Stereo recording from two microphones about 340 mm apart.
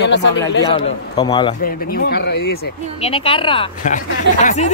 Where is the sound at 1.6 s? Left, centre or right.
Left.